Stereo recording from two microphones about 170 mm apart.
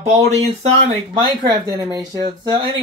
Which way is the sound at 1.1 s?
30° right (ahead or behind).